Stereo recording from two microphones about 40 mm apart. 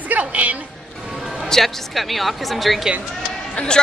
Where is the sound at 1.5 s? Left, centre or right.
Centre.